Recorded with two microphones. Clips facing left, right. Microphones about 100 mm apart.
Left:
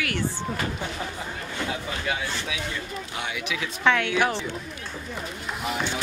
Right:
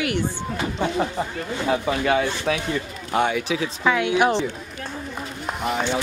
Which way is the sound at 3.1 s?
45° right (ahead or behind).